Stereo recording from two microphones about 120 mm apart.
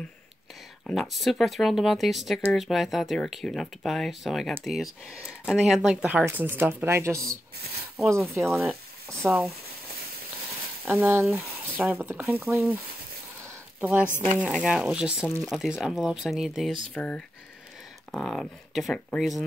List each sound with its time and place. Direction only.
0.8 s speech: centre (ahead or behind); by 7.3 s 25° right (ahead or behind)
8.4 s speech: centre (ahead or behind)
9.2 s speech: 15° right (ahead or behind)
10.9 s speech: 15° right (ahead or behind)
13.7 s speech: 15° right (ahead or behind)
16.9 s speech: 10° left (ahead or behind)